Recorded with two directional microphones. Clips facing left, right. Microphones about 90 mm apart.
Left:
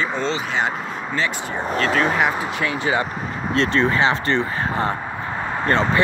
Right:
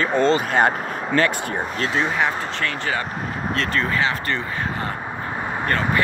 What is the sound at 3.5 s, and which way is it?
Speech, 30° left (ahead or behind).